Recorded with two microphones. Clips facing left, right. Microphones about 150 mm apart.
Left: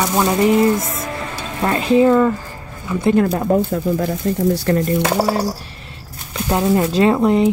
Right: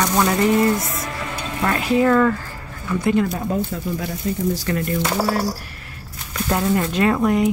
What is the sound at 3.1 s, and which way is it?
Speech, 55° left (ahead or behind).